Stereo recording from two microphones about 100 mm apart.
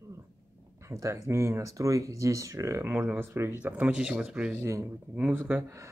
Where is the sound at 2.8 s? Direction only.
15° right (ahead or behind).